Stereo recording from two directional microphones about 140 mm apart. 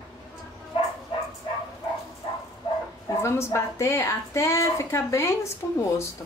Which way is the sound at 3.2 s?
20° left (ahead or behind).